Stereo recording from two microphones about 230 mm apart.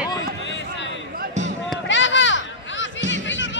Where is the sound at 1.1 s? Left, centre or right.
Right.